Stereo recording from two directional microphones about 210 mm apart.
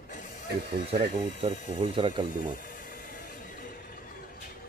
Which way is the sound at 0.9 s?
30° right (ahead or behind).